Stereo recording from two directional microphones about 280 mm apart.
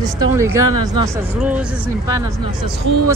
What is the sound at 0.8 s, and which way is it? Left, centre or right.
Speech, centre.